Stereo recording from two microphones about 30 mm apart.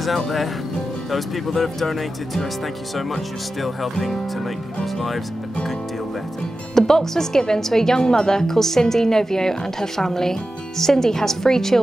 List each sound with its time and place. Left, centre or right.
1.1 s speech: centre
3.6 s speech: centre
6.7 s a woman's voice: centre